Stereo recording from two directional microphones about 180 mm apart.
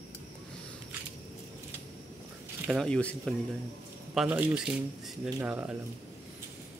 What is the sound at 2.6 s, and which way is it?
Speech, centre (ahead or behind).